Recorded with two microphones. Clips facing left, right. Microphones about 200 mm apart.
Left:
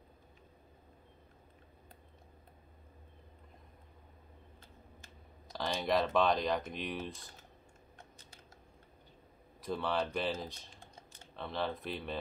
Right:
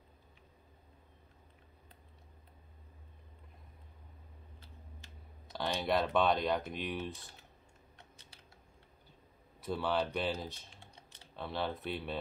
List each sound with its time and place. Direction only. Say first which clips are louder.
5.5 s speech: even; centre (ahead or behind)
8.0 s typing: left 3 dB; 45° left (ahead or behind)
9.6 s speech: right 1 dB; centre (ahead or behind)
10.8 s typing: left 2 dB; 45° left (ahead or behind)
11.3 s speech: even; centre (ahead or behind)